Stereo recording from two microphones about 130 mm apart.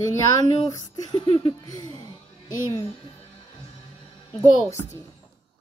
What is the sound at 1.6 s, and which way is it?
Speech, 30° left (ahead or behind).